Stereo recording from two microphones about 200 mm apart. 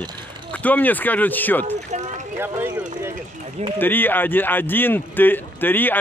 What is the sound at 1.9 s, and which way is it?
Speech, 35° right (ahead or behind).